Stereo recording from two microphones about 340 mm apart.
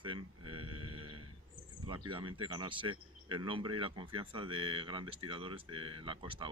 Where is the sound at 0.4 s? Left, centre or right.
Right.